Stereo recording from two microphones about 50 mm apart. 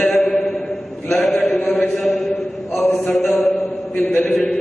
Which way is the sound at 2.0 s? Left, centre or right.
Centre.